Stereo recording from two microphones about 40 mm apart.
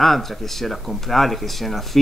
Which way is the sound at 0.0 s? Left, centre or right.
Centre.